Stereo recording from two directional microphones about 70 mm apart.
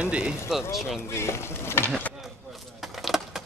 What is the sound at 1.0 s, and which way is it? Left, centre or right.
Speech, left.